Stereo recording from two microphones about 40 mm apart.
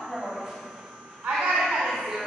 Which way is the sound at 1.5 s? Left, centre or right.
Centre.